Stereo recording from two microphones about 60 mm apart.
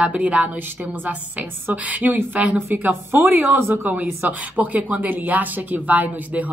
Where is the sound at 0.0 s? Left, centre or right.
Right.